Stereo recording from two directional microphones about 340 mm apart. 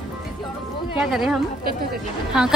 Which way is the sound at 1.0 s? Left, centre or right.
Centre.